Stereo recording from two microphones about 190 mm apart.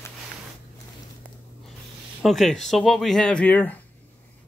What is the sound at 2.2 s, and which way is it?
Speech, centre (ahead or behind).